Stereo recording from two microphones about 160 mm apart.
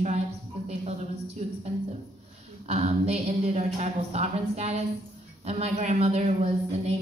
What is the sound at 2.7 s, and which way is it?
Speech, 40° right (ahead or behind).